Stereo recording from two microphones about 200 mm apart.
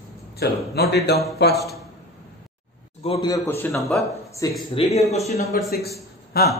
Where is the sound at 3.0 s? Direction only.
25° left (ahead or behind).